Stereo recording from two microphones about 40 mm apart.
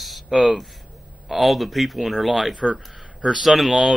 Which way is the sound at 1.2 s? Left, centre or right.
Centre.